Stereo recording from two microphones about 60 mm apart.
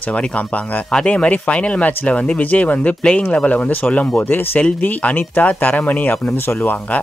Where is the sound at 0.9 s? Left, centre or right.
Centre.